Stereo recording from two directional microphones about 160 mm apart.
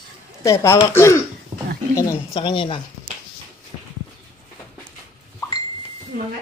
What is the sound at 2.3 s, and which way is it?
Speech, 30° left (ahead or behind).